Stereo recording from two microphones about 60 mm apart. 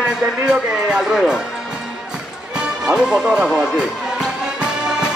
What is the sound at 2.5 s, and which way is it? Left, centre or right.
Music, centre.